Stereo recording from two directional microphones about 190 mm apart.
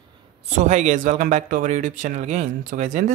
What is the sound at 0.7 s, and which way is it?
Speech, 40° right (ahead or behind).